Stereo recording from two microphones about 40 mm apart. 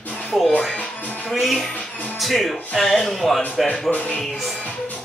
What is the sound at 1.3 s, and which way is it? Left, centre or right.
Speech, centre.